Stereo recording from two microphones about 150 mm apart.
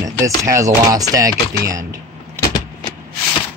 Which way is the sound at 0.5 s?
20° right (ahead or behind).